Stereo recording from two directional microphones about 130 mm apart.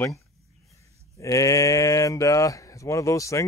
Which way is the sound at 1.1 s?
25° left (ahead or behind).